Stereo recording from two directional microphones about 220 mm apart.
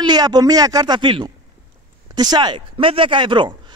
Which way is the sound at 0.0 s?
20° right (ahead or behind).